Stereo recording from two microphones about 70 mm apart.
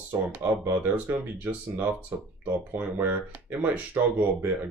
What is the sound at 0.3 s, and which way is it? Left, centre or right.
Speech, right.